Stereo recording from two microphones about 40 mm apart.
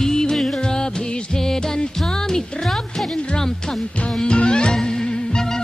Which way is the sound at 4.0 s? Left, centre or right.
Left.